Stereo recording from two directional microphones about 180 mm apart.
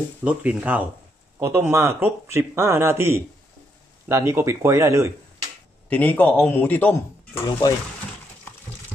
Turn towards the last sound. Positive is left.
turn(degrees=20)  # may be behind; listen again after turning